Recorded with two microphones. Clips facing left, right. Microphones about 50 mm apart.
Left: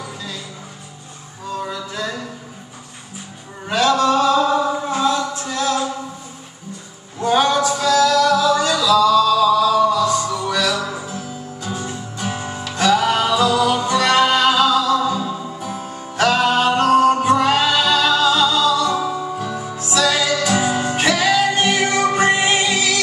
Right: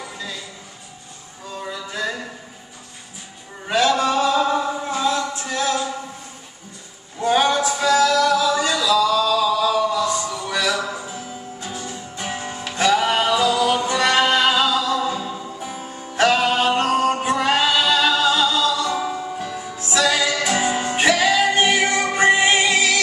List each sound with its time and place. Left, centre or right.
0.0 s music: centre
1.7 s music: centre
3.6 s a sound: centre
5.0 s a capella: centre
7.2 s a sound: centre
7.9 s music: right
15.3 s music: centre
19.4 s music: centre
19.9 s music: centre